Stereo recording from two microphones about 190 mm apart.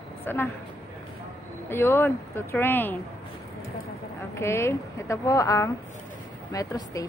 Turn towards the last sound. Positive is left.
turn(degrees=20)  # may be behind; listen again after turning